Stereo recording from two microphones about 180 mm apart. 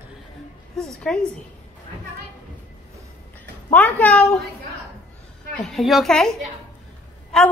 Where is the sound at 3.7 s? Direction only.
10° left (ahead or behind).